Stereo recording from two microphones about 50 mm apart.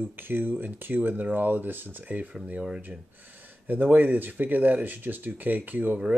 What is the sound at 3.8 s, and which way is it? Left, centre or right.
Speech, right.